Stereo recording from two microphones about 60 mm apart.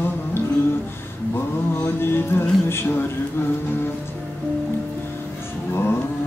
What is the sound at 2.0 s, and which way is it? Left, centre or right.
Music, left.